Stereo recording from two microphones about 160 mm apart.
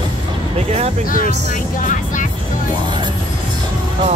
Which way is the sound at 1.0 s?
60° left (ahead or behind).